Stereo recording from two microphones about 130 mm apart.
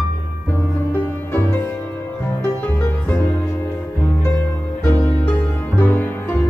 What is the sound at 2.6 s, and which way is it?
Music, 15° left (ahead or behind).